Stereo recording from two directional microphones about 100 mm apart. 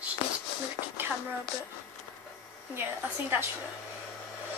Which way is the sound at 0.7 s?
20° right (ahead or behind).